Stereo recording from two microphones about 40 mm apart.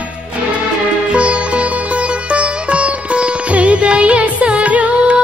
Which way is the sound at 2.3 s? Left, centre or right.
Right.